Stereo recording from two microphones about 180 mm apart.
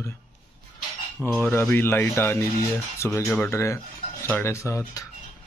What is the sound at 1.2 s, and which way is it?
Speech, 10° left (ahead or behind).